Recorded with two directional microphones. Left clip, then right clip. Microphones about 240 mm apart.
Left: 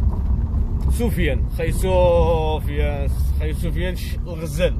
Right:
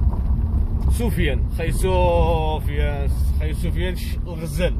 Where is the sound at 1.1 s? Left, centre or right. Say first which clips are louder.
Left 1 dB; centre.